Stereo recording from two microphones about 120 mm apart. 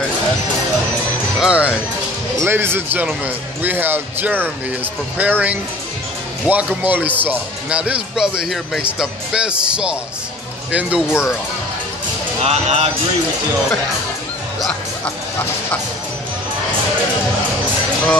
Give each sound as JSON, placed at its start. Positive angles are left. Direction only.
{"t": 1.4, "sound": "speech", "side_deg": -10}
{"t": 2.4, "sound": "speech", "side_deg": -20}
{"t": 12.4, "sound": "speech", "side_deg": -65}